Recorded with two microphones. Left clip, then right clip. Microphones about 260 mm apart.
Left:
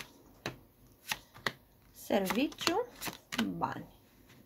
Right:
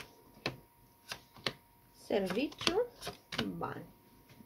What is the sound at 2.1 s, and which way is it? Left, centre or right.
Speech, left.